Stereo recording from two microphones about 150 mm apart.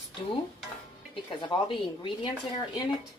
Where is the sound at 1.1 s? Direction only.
35° left (ahead or behind).